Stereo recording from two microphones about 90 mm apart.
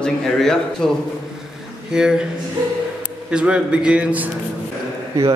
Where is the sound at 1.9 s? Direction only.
10° right (ahead or behind).